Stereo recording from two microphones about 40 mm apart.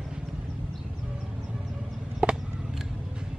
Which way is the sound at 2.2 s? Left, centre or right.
Right.